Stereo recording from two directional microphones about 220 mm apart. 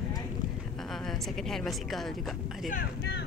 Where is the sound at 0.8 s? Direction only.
Centre (ahead or behind).